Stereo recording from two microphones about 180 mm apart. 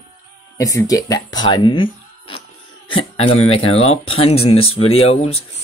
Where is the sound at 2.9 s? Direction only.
30° left (ahead or behind).